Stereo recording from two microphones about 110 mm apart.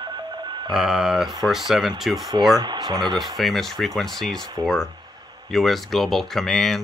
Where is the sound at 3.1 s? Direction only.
Centre (ahead or behind).